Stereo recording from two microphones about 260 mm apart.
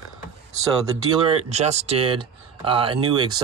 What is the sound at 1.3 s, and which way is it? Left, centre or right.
Speech, right.